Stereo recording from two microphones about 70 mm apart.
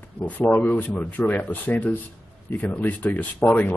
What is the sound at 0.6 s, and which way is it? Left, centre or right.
Speech, left.